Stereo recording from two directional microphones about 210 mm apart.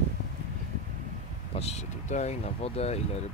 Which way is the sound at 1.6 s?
30° left (ahead or behind).